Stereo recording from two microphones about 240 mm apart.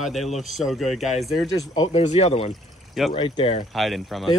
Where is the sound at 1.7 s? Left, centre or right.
Left.